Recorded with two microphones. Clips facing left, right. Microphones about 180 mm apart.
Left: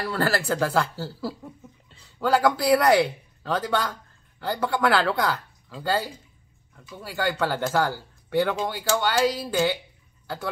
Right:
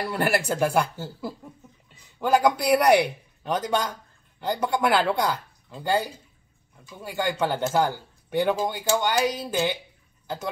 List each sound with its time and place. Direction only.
0.0 s speech: 20° right (ahead or behind)